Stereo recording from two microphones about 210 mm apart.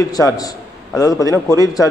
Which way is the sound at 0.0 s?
15° left (ahead or behind).